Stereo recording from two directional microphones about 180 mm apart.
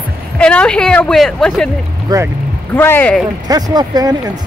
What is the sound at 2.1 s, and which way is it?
Speech, 20° right (ahead or behind).